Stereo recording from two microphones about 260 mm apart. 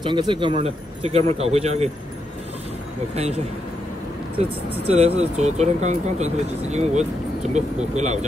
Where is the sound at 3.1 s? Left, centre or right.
Right.